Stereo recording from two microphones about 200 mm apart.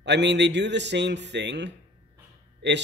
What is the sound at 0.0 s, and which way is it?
Speech, 60° right (ahead or behind).